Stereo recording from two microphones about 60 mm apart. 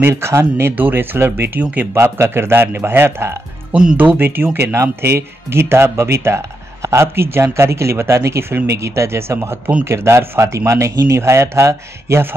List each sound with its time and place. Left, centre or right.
0.1 s speech: right
0.7 s a man's voice: right
1.6 s speech: right
2.0 s a man's voice: right
3.9 s a man's voice: right
5.0 s speech: right